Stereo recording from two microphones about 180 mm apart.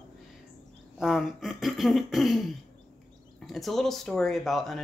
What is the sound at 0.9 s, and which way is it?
Speech, centre (ahead or behind).